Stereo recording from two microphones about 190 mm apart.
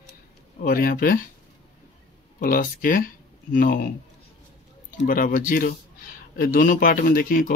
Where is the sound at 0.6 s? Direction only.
45° left (ahead or behind).